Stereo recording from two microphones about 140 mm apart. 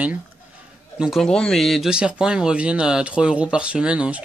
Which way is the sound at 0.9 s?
5° right (ahead or behind).